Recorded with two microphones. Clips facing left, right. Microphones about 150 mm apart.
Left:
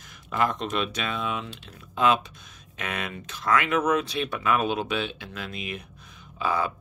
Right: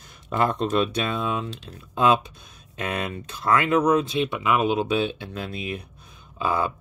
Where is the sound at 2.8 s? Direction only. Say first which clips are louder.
Right 4 dB; 30° right (ahead or behind).